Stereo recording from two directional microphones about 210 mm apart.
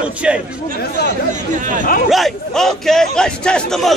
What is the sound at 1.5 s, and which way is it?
Speech, 40° right (ahead or behind).